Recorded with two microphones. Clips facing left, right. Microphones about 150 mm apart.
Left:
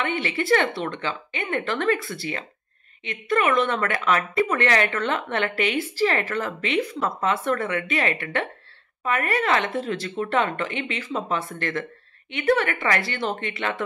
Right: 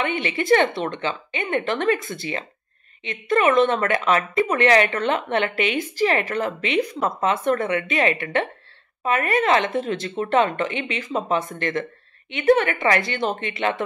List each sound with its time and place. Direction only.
0.0 s speech: 20° right (ahead or behind)